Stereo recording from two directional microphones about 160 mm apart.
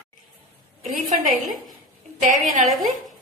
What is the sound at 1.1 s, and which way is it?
Speech, 55° right (ahead or behind).